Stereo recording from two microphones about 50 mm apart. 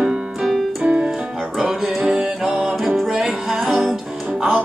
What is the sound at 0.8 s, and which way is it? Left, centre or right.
Music, right.